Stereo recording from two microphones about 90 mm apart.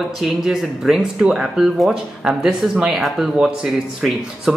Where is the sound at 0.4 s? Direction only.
Centre (ahead or behind).